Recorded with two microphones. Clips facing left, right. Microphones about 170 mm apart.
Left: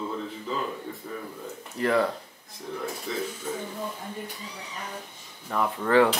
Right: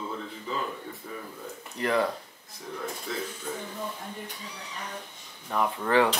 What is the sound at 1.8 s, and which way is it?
Speech, 20° right (ahead or behind).